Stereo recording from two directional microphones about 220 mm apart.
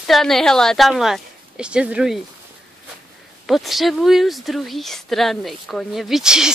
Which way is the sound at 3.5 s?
Centre (ahead or behind).